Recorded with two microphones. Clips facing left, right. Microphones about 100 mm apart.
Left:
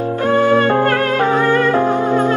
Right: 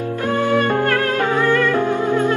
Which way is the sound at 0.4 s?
20° left (ahead or behind).